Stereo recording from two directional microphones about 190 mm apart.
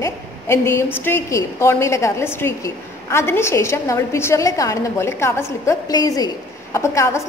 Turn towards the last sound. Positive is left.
turn(degrees=15)  # may be behind; listen again after turning